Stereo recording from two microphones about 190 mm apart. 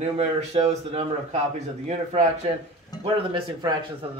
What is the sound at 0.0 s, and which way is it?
A man's voice, 35° right (ahead or behind).